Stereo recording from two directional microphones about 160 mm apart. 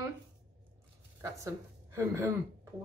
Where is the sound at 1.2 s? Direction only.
20° right (ahead or behind).